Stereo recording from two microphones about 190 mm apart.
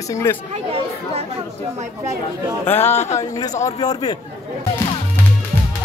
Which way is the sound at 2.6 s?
10° left (ahead or behind).